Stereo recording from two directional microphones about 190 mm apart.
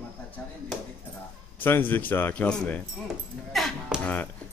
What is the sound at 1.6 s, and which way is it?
Speech, 10° left (ahead or behind).